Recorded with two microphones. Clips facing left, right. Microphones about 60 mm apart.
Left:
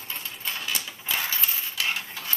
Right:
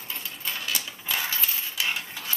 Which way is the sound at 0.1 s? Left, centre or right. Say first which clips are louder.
Even; centre.